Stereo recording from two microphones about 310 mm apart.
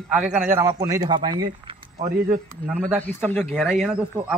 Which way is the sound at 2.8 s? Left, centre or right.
Centre.